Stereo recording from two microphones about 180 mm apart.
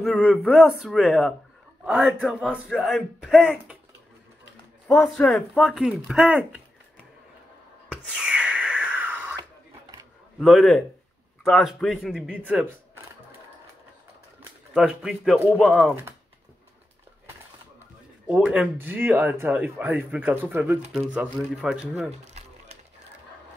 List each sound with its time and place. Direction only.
0.0 s speech: centre (ahead or behind)
4.8 s speech: 5° left (ahead or behind)
7.9 s a sound: 5° right (ahead or behind)
10.4 s speech: centre (ahead or behind)
14.7 s speech: 5° right (ahead or behind)
18.2 s speech: 5° right (ahead or behind)
22.2 s a sound: 40° right (ahead or behind)